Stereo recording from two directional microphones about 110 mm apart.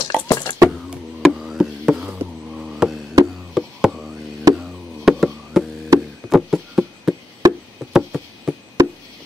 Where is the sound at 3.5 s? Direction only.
5° right (ahead or behind).